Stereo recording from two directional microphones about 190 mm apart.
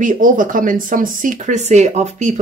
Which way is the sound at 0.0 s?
45° right (ahead or behind).